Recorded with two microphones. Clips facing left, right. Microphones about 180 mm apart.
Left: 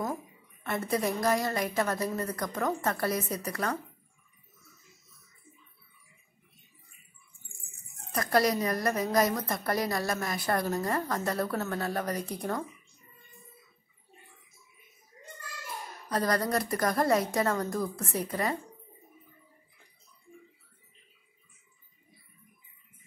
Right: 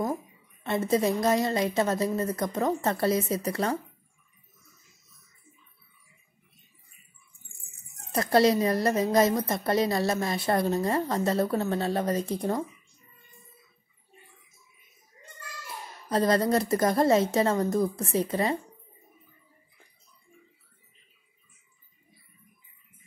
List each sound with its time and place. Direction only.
0.7 s a woman's voice: 25° right (ahead or behind)
8.1 s a woman's voice: 25° right (ahead or behind)
16.1 s a woman's voice: 25° right (ahead or behind)